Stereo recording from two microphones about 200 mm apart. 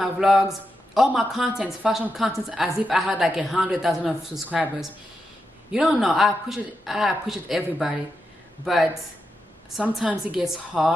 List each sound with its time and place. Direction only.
0.0 s a woman's voice: centre (ahead or behind)
9.7 s a woman's voice: centre (ahead or behind)